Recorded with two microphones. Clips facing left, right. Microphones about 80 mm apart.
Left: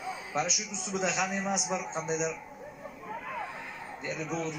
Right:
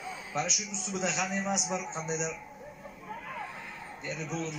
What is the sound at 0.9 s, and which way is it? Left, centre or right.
A man's voice, centre.